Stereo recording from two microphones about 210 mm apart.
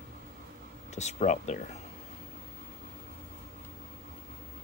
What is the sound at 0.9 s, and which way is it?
Speech, 35° left (ahead or behind).